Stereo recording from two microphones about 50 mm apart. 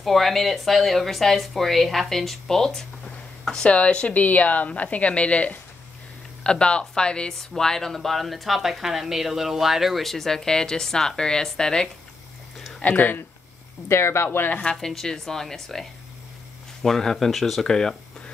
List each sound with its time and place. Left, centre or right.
0.0 s speech: centre
3.7 s speech: left
4.1 s speech: left; by 11.9 s centre
12.8 s speech: left
13.8 s speech: left
14.6 s speech: centre
14.9 s speech: centre